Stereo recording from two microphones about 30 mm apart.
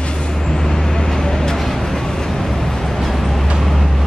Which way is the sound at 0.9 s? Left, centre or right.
Left.